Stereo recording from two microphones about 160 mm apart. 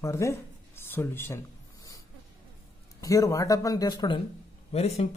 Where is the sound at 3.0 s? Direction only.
20° left (ahead or behind).